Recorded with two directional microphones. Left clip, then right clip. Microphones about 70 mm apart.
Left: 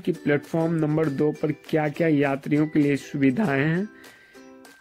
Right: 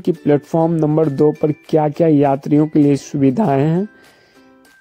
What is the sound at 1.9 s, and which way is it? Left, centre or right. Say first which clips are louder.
Speech: right 8 dB; right.